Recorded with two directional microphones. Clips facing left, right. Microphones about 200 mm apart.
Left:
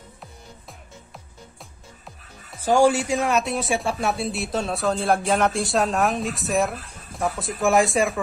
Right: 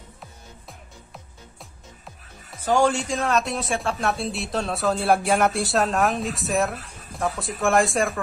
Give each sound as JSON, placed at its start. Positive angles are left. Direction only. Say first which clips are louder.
{"t": 0.2, "sound": "music", "louder": "left 1 dB", "side_deg": 0}
{"t": 2.6, "sound": "speech", "louder": "left 3 dB", "side_deg": 10}